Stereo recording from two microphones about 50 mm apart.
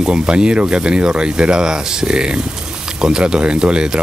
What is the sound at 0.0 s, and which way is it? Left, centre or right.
Speech, centre.